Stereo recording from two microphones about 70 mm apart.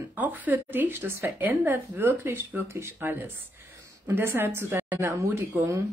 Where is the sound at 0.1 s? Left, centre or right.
Right.